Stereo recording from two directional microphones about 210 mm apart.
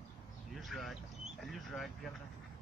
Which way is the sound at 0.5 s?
Centre (ahead or behind).